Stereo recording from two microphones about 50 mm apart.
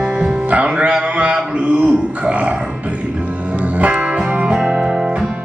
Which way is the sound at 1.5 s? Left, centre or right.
Right.